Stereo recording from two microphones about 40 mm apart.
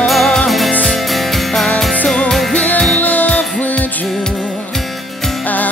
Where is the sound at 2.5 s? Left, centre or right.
Left.